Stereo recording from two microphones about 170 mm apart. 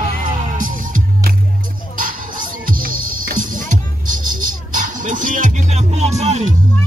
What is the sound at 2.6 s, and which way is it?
Music, 55° right (ahead or behind).